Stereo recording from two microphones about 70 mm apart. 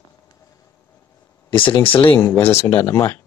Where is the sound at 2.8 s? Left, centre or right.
Left.